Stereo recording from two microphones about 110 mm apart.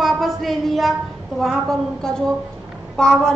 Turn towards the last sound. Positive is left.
turn(degrees=5)  # may be behind; listen again after turning